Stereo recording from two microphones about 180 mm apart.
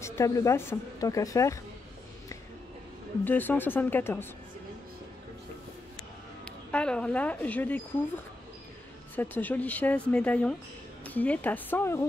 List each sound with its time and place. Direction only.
0.0 s a woman's voice: 15° left (ahead or behind)
3.3 s a woman's voice: 10° left (ahead or behind)
6.4 s speech: 5° left (ahead or behind)
9.1 s a woman's voice: 10° left (ahead or behind)